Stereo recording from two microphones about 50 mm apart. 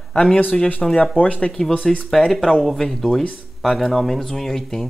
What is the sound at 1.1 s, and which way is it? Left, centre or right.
Speech, left.